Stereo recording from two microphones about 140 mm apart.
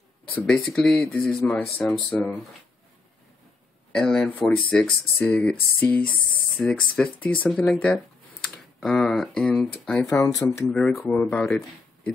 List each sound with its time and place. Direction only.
0.4 s speech: 5° left (ahead or behind)
3.9 s speech: 5° left (ahead or behind)
10.1 s speech: 20° left (ahead or behind)